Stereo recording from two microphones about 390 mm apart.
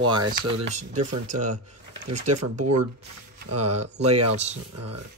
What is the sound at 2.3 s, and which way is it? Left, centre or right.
Speech, right.